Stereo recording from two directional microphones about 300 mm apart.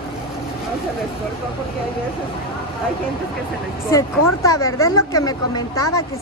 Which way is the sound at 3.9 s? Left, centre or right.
Centre.